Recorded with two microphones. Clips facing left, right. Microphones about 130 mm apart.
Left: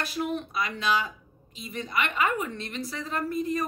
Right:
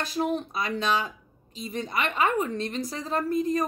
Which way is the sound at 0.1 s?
35° right (ahead or behind).